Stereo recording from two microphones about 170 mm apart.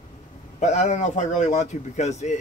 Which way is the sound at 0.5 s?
45° left (ahead or behind).